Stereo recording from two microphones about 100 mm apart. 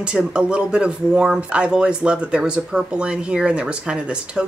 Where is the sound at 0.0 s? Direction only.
10° right (ahead or behind).